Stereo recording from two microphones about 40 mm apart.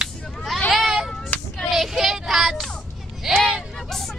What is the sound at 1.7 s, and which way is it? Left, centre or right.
Speech, centre.